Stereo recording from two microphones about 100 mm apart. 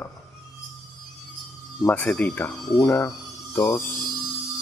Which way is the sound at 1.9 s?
15° left (ahead or behind).